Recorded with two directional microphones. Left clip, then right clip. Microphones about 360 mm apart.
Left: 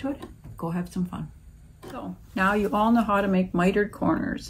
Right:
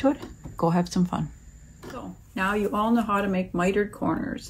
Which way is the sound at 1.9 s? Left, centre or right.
Centre.